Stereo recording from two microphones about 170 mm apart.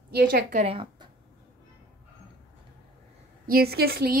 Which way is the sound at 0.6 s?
30° right (ahead or behind).